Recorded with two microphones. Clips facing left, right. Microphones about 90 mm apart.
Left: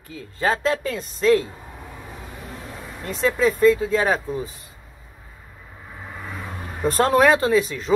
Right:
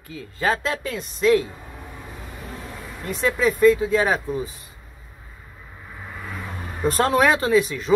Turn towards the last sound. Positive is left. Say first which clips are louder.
# even
turn(degrees=35)  # may be behind; listen again after turning